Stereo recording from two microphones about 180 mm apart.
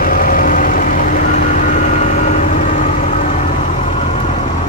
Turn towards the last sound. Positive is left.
turn(degrees=45)  # may be behind; listen again after turning